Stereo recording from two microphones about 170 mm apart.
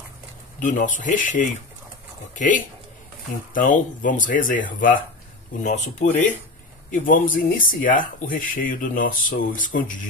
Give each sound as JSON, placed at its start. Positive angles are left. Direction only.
{"t": 0.6, "sound": "speech", "side_deg": 50}